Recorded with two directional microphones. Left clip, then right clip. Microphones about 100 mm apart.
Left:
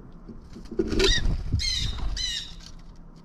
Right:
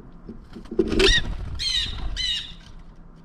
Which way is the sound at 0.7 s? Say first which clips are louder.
Right 5 dB; 15° left (ahead or behind).